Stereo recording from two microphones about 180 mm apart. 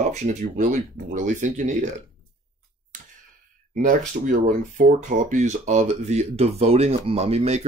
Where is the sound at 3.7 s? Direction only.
45° right (ahead or behind).